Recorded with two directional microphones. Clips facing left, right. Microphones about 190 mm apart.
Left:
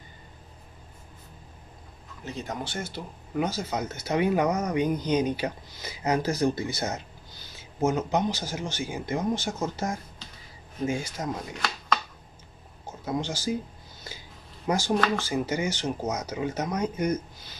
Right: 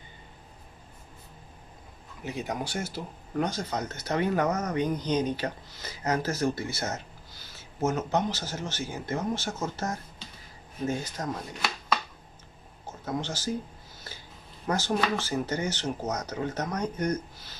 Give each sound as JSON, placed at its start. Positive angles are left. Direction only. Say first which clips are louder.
{"t": 2.2, "sound": "speech", "louder": "right 1 dB", "side_deg": -15}
{"t": 3.3, "sound": "speech", "louder": "left 1 dB", "side_deg": 5}
{"t": 13.0, "sound": "speech", "louder": "left 3 dB", "side_deg": 10}
{"t": 14.1, "sound": "a sound", "louder": "left 3 dB", "side_deg": 10}
{"t": 14.7, "sound": "speech", "louder": "left 2 dB", "side_deg": 15}